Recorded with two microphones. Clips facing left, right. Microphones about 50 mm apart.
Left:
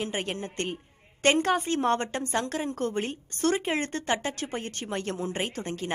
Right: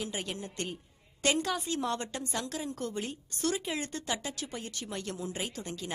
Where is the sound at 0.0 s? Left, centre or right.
Left.